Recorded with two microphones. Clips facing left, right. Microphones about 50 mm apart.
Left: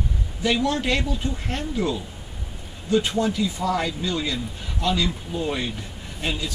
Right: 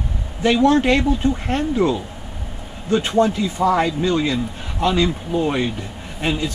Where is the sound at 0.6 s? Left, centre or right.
Right.